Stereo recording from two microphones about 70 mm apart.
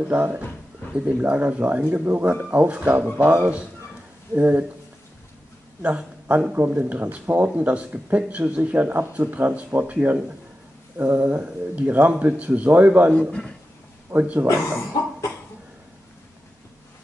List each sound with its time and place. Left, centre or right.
0.0 s speech: right
5.8 s speech: right
14.1 s speech: right
15.0 s cough: left